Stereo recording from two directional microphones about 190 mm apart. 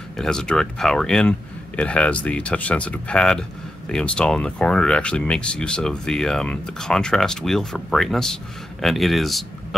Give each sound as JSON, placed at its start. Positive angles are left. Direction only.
{"t": 0.2, "sound": "speech", "side_deg": 5}